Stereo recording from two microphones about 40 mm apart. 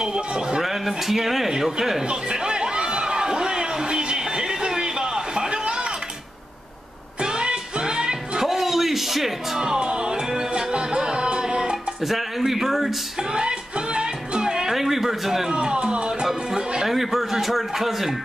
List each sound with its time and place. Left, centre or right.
0.0 s a sound: centre
0.6 s speech: centre
2.0 s a sound: centre
7.2 s music: right; by 9.6 s centre
9.6 s music: centre
12.0 s speech: centre
13.3 s music: right
15.5 s a sound: right
16.8 s speech: centre